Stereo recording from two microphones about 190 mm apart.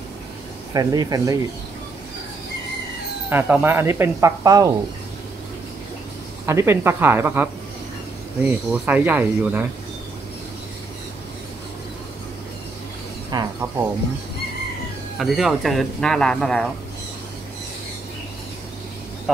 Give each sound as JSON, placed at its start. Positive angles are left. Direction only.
{"t": 0.7, "sound": "speech", "side_deg": -20}
{"t": 3.3, "sound": "speech", "side_deg": -10}
{"t": 6.4, "sound": "speech", "side_deg": -15}
{"t": 8.5, "sound": "speech", "side_deg": -5}
{"t": 13.3, "sound": "cricket", "side_deg": -20}
{"t": 15.1, "sound": "speech", "side_deg": 0}